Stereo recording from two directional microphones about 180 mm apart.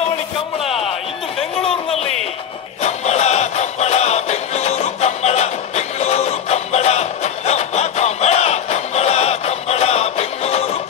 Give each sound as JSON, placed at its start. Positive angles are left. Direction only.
{"t": 2.8, "sound": "music", "side_deg": 40}